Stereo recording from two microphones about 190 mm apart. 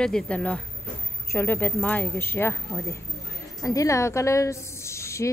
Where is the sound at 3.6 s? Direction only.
20° left (ahead or behind).